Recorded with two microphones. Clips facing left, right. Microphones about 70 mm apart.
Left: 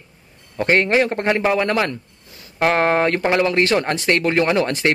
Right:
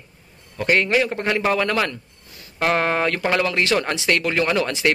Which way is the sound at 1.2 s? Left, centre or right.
Centre.